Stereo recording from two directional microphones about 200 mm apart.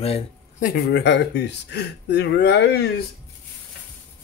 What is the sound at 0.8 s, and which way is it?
Speech, 60° left (ahead or behind).